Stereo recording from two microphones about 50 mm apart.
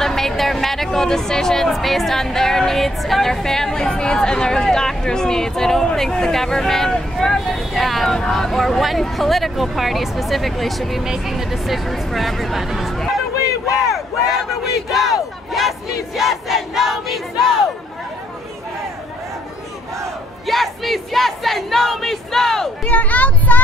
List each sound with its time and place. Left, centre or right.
0.0 s speech: centre
13.8 s battle cry: centre
20.4 s battle cry: centre
22.8 s speech: left